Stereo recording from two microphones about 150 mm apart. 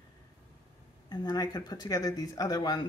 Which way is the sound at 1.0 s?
25° left (ahead or behind).